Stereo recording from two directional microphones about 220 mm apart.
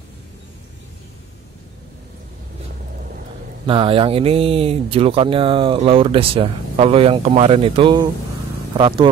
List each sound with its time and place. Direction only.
3.6 s speech: 25° right (ahead or behind)